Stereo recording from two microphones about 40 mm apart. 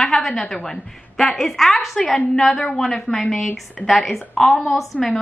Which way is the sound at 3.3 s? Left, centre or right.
Centre.